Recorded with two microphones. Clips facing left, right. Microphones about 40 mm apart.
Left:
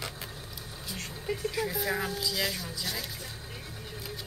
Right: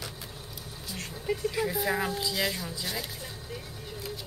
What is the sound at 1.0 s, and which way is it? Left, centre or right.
Speech, centre.